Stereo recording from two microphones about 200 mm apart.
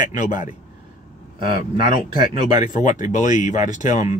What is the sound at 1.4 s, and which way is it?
Speech, 25° right (ahead or behind).